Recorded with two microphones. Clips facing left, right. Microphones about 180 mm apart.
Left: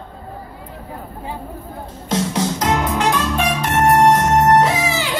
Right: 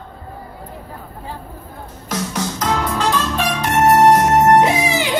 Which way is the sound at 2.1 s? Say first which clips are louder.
Left 4 dB; 25° left (ahead or behind).